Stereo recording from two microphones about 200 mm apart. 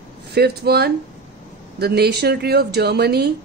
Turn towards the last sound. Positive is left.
turn(degrees=-55)  # may be behind; listen again after turning